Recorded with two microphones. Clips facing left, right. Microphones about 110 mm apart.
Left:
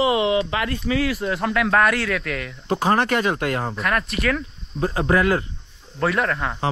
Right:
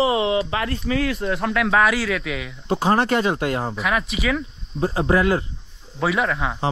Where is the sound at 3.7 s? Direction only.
Centre (ahead or behind).